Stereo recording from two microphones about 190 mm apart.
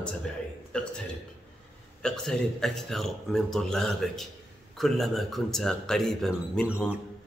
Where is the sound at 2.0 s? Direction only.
5° left (ahead or behind).